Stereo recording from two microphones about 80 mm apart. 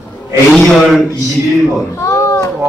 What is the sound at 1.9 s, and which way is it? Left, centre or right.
Speech, left.